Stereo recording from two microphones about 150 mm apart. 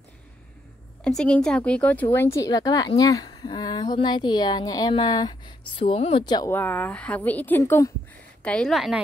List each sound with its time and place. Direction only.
1.0 s a woman's voice: 5° left (ahead or behind); by 6.2 s 40° left (ahead or behind)
6.2 s a woman's voice: 25° left (ahead or behind)
6.5 s a woman's voice: 10° left (ahead or behind)